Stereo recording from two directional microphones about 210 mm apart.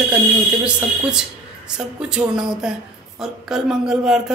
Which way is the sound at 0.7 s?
5° right (ahead or behind).